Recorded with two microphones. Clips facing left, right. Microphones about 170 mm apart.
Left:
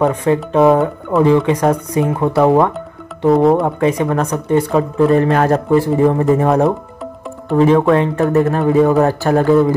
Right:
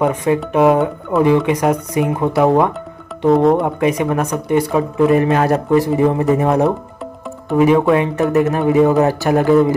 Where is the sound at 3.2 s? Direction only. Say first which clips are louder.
Left 1 dB; centre (ahead or behind).